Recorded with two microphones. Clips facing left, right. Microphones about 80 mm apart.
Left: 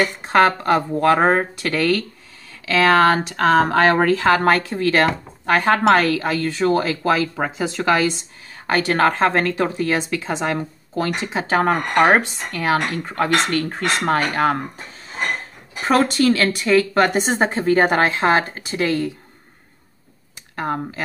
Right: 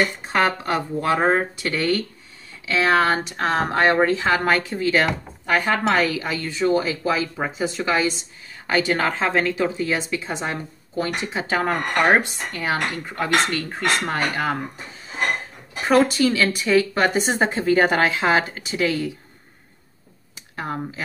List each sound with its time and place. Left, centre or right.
0.3 s speech: left
1.7 s a woman's voice: left
7.1 s speech: left
8.7 s a woman's voice: left
11.5 s speech: left
13.2 s a woman's voice: left
15.9 s speech: left
20.5 s speech: left